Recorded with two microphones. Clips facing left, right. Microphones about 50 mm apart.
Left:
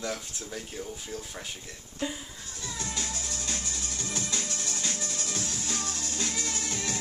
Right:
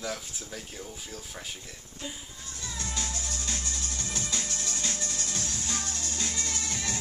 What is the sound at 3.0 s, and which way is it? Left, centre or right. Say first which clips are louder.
Music: even; centre.